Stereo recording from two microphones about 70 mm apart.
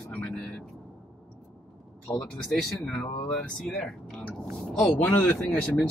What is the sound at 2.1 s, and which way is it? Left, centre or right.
Speech, left.